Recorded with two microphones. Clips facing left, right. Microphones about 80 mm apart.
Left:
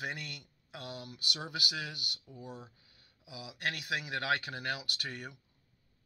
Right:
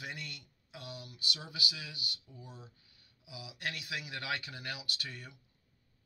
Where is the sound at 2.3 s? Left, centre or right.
Left.